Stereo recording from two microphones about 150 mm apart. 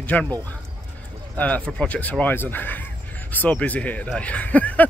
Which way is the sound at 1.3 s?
10° left (ahead or behind).